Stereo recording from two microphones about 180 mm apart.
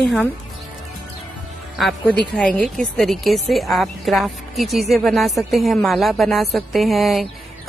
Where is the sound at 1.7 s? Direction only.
Centre (ahead or behind).